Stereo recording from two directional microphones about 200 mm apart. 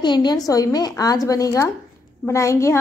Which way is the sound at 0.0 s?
20° left (ahead or behind).